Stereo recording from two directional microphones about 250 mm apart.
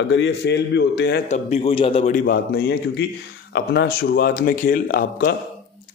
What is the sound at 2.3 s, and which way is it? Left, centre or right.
Speech, left.